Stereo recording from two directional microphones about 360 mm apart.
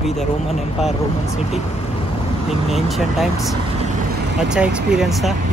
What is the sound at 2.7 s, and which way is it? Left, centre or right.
Speech, centre.